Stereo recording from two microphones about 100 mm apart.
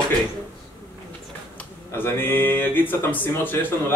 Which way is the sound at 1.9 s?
20° left (ahead or behind).